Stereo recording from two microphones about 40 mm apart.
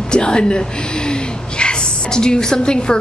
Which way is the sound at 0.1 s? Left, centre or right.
Left.